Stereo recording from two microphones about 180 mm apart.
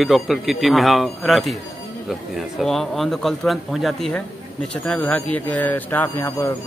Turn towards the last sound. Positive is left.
turn(degrees=10)  # may be behind; listen again after turning